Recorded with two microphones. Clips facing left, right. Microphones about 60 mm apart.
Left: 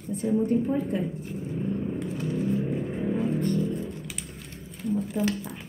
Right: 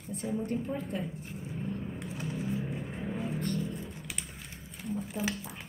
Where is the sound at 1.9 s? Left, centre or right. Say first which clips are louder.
Left 8 dB; centre.